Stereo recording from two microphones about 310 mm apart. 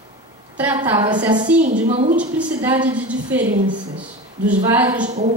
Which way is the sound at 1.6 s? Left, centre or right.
Right.